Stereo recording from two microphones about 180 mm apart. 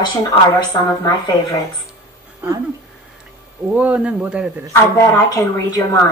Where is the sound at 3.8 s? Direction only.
5° right (ahead or behind).